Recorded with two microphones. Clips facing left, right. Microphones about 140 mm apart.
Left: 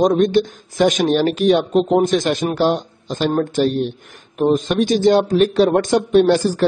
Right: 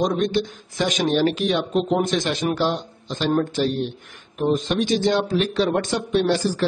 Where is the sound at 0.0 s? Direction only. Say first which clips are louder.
Left 7 dB; 45° left (ahead or behind).